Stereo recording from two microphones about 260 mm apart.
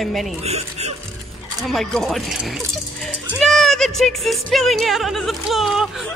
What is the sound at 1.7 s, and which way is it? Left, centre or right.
Speech, centre.